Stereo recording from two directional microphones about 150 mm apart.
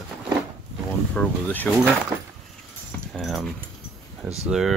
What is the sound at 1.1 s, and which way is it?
Speech, 10° left (ahead or behind).